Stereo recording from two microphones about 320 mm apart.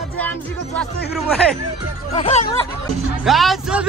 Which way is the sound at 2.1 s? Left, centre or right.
Left.